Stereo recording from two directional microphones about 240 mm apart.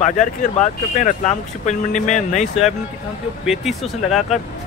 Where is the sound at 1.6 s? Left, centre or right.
Left.